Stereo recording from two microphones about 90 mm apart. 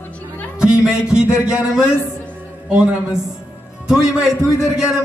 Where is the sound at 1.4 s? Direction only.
10° right (ahead or behind).